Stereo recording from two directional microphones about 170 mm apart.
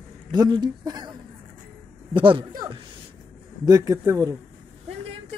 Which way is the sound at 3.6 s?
20° right (ahead or behind).